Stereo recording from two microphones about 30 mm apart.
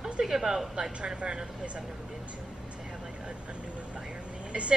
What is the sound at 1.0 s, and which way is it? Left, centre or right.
Speech, right.